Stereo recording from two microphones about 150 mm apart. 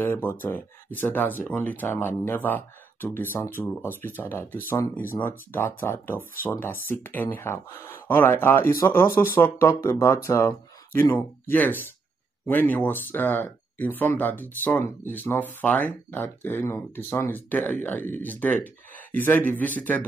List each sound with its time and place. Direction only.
0.0 s speech: 15° left (ahead or behind)